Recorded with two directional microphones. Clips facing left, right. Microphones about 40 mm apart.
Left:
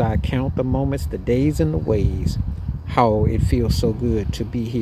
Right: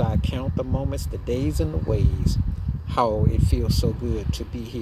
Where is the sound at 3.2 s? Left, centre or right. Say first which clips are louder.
Left 5 dB; left.